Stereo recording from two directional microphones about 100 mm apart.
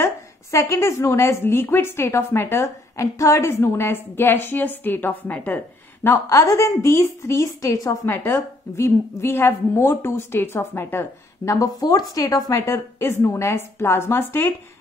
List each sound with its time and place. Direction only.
0.0 s a woman's voice: 30° left (ahead or behind)
6.0 s a woman's voice: 30° left (ahead or behind)
11.5 s speech: 40° left (ahead or behind)
12.5 s a woman's voice: 25° left (ahead or behind)